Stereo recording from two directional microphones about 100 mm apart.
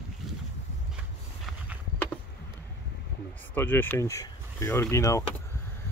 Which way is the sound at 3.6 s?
20° left (ahead or behind).